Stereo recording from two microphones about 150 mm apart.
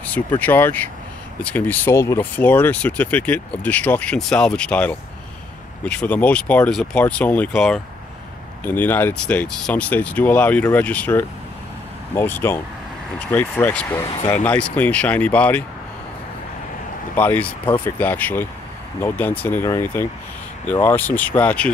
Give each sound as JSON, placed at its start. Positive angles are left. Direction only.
{"t": 0.4, "sound": "speech", "side_deg": 15}
{"t": 17.2, "sound": "speech", "side_deg": 10}